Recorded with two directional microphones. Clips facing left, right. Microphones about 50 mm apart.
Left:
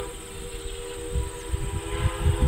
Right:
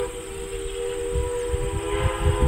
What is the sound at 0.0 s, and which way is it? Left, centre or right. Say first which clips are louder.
Train: right 7 dB; right.